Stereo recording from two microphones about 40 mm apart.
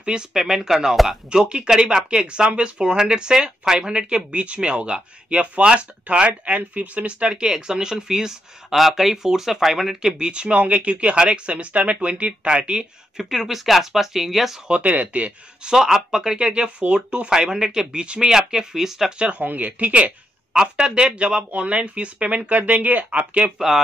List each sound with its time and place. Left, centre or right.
0.0 s speech: right
1.0 s speech: centre
1.7 s speech: centre
10.1 s speech: right
13.2 s speech: centre
14.7 s speech: right
15.6 s speech: centre
19.1 s speech: right
20.5 s speech: right